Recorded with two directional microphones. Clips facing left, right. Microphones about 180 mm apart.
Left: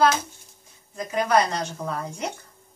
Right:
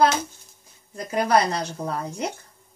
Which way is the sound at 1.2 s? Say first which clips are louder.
Right 1 dB; 35° right (ahead or behind).